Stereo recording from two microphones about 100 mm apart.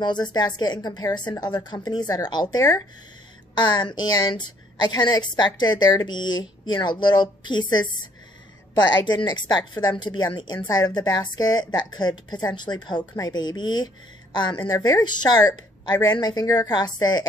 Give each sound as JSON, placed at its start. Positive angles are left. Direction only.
{"t": 0.0, "sound": "a woman's voice", "side_deg": 45}
{"t": 14.7, "sound": "a woman's voice", "side_deg": 40}